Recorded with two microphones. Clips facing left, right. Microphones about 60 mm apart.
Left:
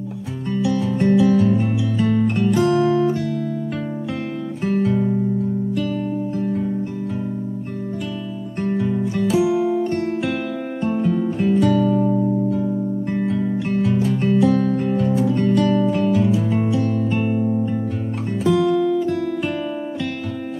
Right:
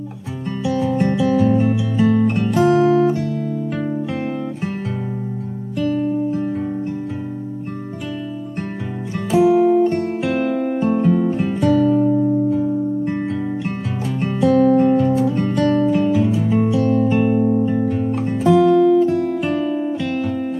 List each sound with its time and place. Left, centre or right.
0.7 s music: centre
2.8 s music: right
4.6 s guitar: centre
9.4 s music: centre
9.8 s music: centre
15.0 s music: centre
15.3 s music: centre
18.4 s music: centre